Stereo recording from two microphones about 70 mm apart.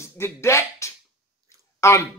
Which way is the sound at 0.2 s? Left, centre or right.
Left.